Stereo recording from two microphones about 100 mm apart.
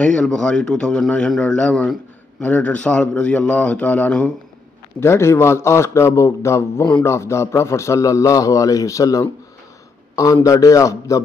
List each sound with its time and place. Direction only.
0.0 s speech: 5° left (ahead or behind)
5.0 s a man's voice: 25° left (ahead or behind)